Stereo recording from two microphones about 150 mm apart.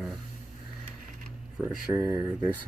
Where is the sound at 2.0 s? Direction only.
20° right (ahead or behind).